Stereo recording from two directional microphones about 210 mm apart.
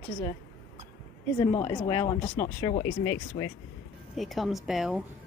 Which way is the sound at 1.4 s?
20° left (ahead or behind).